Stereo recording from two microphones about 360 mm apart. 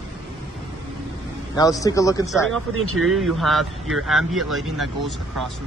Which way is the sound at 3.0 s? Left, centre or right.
Centre.